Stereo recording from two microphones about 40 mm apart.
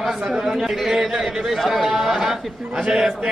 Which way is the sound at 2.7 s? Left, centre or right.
Right.